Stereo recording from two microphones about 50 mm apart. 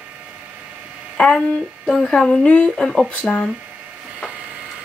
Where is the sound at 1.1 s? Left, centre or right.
Centre.